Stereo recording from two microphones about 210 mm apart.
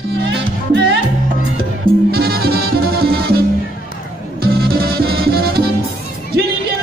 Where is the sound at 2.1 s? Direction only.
45° right (ahead or behind).